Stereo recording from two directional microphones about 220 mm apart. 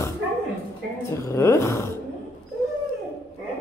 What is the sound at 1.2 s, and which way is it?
Speech, 15° left (ahead or behind).